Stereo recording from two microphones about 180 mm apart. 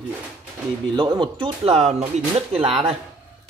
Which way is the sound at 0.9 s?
25° right (ahead or behind).